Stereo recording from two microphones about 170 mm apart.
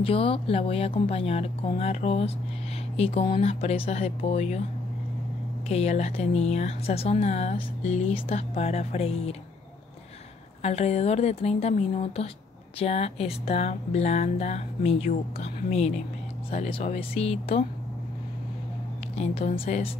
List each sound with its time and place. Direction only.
0.0 s speech: 30° left (ahead or behind)
5.7 s speech: 40° left (ahead or behind)
10.6 s speech: 40° left (ahead or behind)
19.1 s speech: 40° left (ahead or behind)